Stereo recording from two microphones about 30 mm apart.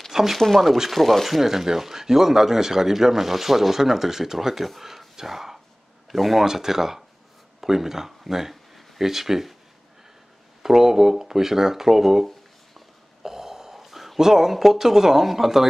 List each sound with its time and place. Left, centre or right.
0.1 s a sound: centre
0.8 s speech: centre
1.4 s speech: centre
4.8 s a sound: centre
6.1 s speech: centre
6.4 s speech: centre
10.6 s speech: centre
13.2 s a sound: centre
14.2 s speech: centre